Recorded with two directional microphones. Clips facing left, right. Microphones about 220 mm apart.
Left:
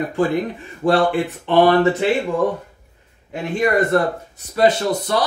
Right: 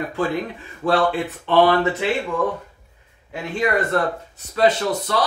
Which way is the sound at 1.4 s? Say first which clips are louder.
Left 2 dB; 15° left (ahead or behind).